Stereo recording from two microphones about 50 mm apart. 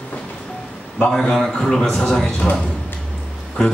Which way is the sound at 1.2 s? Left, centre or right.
Centre.